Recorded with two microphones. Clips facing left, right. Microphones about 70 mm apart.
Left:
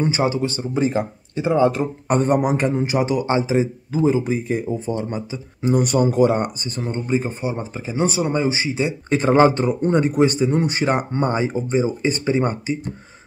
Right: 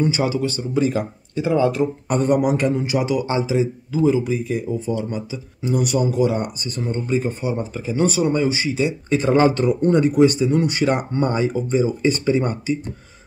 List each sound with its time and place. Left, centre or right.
0.0 s speech: left
6.8 s speech: left